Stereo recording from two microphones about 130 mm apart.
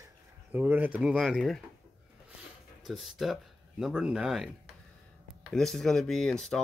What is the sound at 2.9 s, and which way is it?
Speech, centre (ahead or behind).